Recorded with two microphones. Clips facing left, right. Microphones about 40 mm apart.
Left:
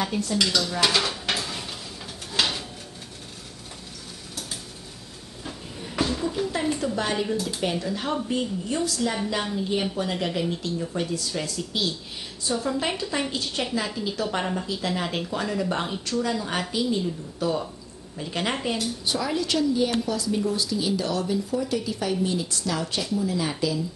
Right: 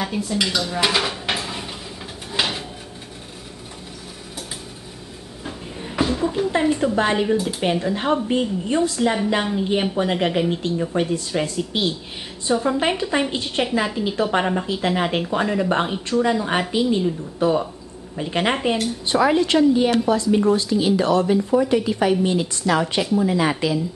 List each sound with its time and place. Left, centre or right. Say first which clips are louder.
0.0 s speech: right 2 dB; centre
2.3 s a sound: right 2 dB; centre
5.4 s a woman's voice: right 4 dB; right
18.8 s a woman's voice: right 8 dB; right
20.6 s a woman's voice: right 7 dB; right
22.2 s speech: right 6 dB; right
22.7 s a woman's voice: right 9 dB; right